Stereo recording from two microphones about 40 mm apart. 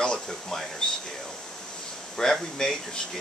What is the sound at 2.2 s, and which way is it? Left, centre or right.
Speech, centre.